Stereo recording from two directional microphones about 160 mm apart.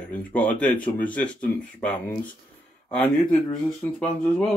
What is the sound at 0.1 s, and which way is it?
Speech, 10° left (ahead or behind).